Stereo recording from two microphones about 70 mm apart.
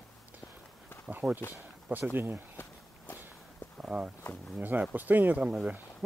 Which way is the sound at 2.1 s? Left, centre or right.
Right.